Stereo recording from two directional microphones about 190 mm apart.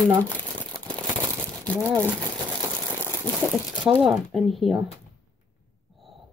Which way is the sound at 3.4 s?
5° right (ahead or behind).